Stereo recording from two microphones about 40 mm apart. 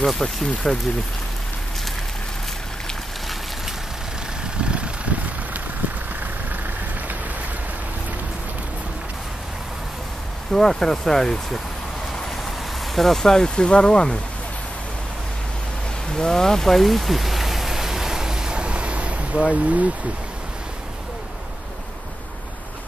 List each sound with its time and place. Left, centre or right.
0.0 s speech: centre
4.6 s vehicle: right
10.5 s speech: centre
12.9 s speech: centre; by 14.2 s left
16.1 s rain: centre; by 19.9 s right